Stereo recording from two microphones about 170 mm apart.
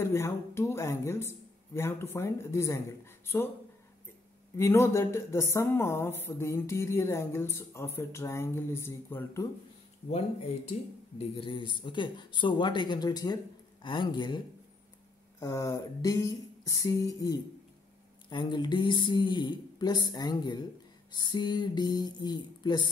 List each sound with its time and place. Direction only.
0.0 s speech: 15° left (ahead or behind)
4.6 s speech: 15° left (ahead or behind)
10.1 s speech: 40° left (ahead or behind)